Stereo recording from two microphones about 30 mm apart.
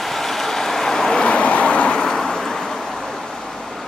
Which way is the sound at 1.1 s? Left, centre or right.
Left.